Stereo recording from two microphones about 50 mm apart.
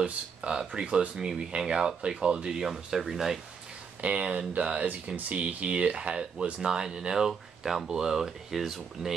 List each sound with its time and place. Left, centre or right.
0.0 s speech: right
1.5 s speech: centre
4.0 s speech: right; by 9.1 s centre